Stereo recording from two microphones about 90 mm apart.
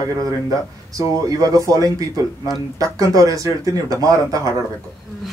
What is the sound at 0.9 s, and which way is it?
Speech, 40° right (ahead or behind).